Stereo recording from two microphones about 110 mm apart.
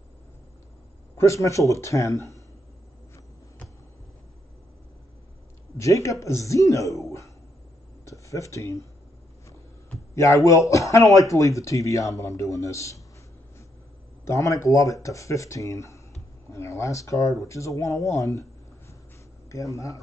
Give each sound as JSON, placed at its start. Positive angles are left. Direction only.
{"t": 1.1, "sound": "speech", "side_deg": 25}
{"t": 5.8, "sound": "speech", "side_deg": 30}
{"t": 10.1, "sound": "speech", "side_deg": 30}
{"t": 14.2, "sound": "speech", "side_deg": 30}
{"t": 19.5, "sound": "speech", "side_deg": 30}